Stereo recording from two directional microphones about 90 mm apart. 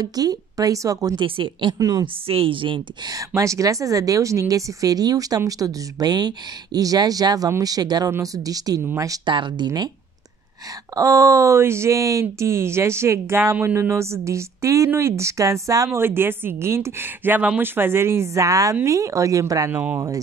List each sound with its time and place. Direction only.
0.0 s speech: 45° right (ahead or behind)
1.1 s a woman's voice: 70° right (ahead or behind)
1.8 s speech: 45° right (ahead or behind)
2.2 s a woman's voice: 90° right; by 2.8 s 70° right (ahead or behind)
3.1 s speech: 35° right (ahead or behind)
9.2 s a woman's voice: 60° right (ahead or behind)
11.0 s speech: 35° right (ahead or behind)
16.0 s a woman's voice: 25° right (ahead or behind)
19.7 s a woman's voice: 20° right (ahead or behind)